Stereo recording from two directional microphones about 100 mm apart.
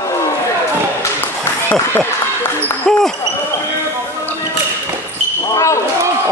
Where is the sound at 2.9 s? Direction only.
5° left (ahead or behind).